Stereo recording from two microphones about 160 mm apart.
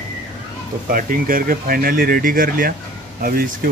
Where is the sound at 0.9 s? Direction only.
60° right (ahead or behind).